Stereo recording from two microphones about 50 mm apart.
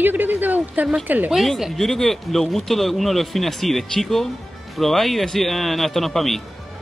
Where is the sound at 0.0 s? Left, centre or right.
Right.